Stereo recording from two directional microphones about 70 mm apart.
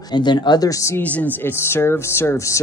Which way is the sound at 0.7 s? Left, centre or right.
Left.